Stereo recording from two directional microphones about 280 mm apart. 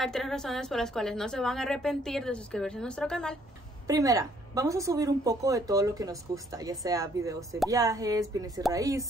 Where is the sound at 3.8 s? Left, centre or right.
Centre.